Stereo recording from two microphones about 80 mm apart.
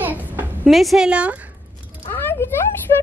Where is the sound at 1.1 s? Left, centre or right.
Centre.